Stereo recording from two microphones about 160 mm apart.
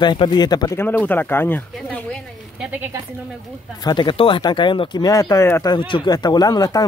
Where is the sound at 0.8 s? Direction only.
10° left (ahead or behind).